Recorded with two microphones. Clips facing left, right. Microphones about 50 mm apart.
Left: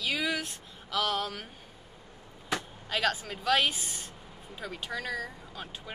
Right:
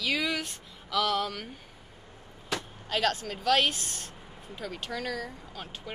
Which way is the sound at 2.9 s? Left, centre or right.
Centre.